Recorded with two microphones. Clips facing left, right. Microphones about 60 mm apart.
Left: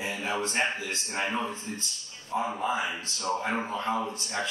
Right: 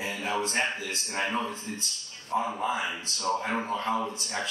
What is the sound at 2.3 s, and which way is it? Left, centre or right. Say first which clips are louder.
Speech: right 1 dB; centre.